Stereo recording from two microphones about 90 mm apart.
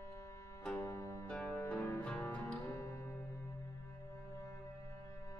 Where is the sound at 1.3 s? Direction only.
10° left (ahead or behind).